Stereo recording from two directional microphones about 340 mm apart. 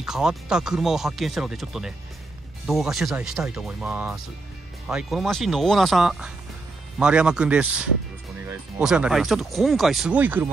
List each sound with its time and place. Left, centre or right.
0.0 s speech: centre